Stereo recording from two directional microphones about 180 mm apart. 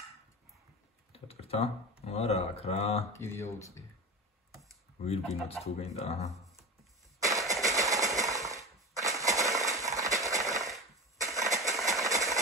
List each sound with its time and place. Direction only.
1.1 s speech: 35° left (ahead or behind)
3.1 s speech: 15° left (ahead or behind)
5.0 s speech: 35° left (ahead or behind)
7.2 s a sound: 15° right (ahead or behind)
12.1 s engine: 20° right (ahead or behind)